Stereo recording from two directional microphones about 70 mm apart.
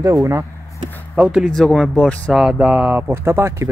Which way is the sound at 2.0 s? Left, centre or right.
Centre.